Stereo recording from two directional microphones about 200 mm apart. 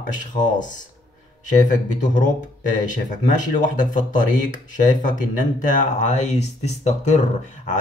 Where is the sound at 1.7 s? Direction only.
40° left (ahead or behind).